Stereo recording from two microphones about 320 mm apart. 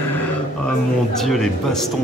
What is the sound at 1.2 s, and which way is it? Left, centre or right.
Speech, centre.